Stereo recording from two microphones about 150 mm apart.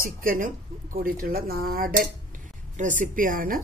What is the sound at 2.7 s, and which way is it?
Speech, 55° right (ahead or behind).